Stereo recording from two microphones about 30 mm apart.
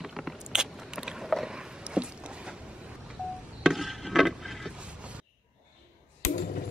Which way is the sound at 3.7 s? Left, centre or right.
Centre.